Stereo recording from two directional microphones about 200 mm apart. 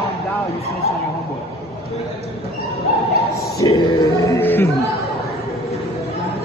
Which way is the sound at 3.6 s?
15° left (ahead or behind).